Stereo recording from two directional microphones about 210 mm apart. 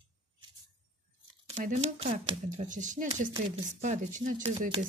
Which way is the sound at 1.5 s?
35° right (ahead or behind).